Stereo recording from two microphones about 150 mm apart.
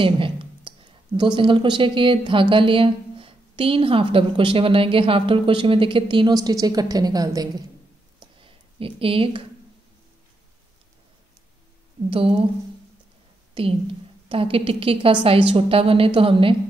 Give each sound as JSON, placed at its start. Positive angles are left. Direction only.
{"t": 0.0, "sound": "a woman's voice", "side_deg": -35}
{"t": 8.4, "sound": "a sound", "side_deg": -35}
{"t": 12.1, "sound": "a woman's voice", "side_deg": -40}
{"t": 14.3, "sound": "a woman's voice", "side_deg": -35}